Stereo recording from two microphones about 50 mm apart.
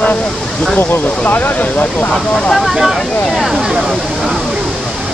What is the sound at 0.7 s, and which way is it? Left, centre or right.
Speech, left.